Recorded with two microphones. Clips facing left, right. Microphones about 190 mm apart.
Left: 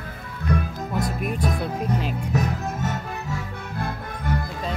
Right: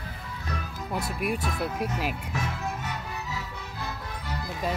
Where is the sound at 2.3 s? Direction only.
40° left (ahead or behind).